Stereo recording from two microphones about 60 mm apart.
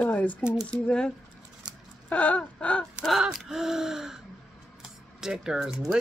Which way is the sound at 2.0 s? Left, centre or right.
Left.